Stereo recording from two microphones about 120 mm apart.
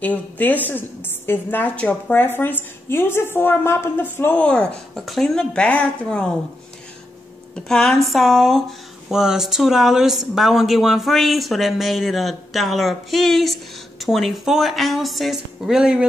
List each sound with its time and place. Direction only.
0.0 s a woman's voice: 15° left (ahead or behind)
7.5 s speech: 5° left (ahead or behind)